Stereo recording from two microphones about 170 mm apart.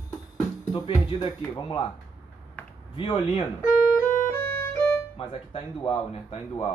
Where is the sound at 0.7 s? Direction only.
30° left (ahead or behind).